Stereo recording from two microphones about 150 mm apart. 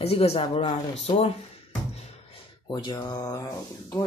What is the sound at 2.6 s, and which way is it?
Speech, 25° left (ahead or behind).